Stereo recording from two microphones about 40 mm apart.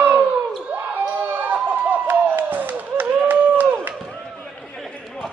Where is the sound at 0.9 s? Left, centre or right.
Right.